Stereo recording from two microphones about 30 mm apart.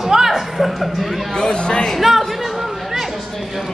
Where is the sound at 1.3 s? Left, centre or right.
Left.